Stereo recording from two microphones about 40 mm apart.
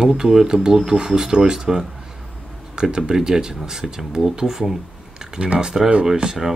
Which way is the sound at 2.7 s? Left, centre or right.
Centre.